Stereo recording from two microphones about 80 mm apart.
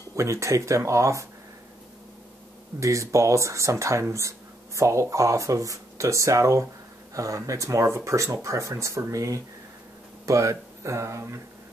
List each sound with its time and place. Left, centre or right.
0.1 s speech: right
2.8 s speech: right